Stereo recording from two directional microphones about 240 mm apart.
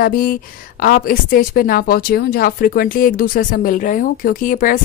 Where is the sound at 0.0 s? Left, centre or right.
Left.